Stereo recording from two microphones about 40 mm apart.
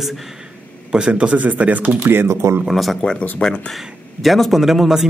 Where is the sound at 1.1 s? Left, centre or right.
Right.